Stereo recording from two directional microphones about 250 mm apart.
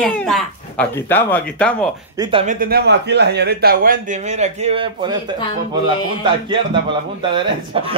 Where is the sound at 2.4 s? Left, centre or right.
Right; by 5.3 s centre.